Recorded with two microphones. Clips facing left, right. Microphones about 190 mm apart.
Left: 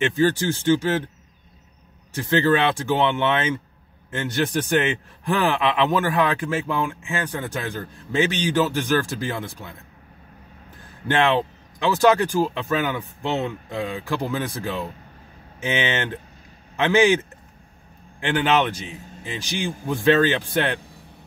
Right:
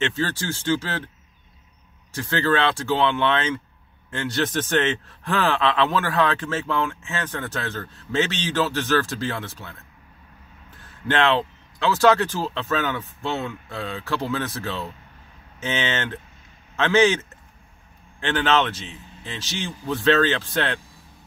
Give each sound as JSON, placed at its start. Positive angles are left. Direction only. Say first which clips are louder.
{"t": 0.0, "sound": "speech", "louder": "left 6 dB", "side_deg": 15}
{"t": 2.1, "sound": "speech", "louder": "left 3 dB", "side_deg": 15}
{"t": 10.8, "sound": "a man's voice", "louder": "left 1 dB", "side_deg": 15}
{"t": 18.2, "sound": "speech", "louder": "left 1 dB", "side_deg": 15}